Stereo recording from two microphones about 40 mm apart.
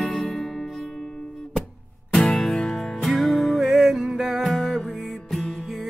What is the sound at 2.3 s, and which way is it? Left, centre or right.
Music, centre.